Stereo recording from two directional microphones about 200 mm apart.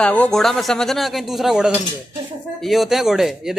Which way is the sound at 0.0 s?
5° left (ahead or behind).